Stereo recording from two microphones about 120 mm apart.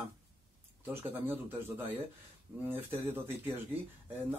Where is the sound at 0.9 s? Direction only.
15° right (ahead or behind).